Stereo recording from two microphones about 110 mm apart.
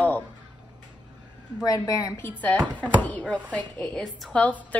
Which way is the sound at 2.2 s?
15° left (ahead or behind).